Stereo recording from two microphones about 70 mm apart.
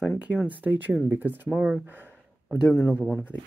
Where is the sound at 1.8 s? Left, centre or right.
Right.